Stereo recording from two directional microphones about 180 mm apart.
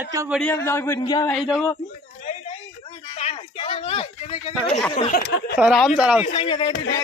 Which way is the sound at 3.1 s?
35° left (ahead or behind).